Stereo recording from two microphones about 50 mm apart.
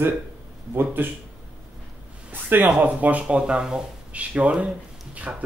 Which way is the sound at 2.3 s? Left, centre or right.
Right.